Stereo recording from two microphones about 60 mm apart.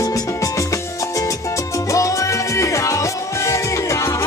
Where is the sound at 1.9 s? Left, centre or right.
Left.